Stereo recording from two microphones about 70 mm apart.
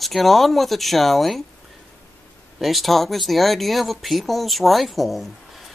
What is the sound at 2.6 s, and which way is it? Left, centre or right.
Speech, centre.